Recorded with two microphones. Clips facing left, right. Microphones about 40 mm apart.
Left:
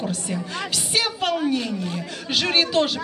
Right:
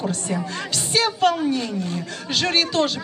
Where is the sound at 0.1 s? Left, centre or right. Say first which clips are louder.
Right 2 dB; centre.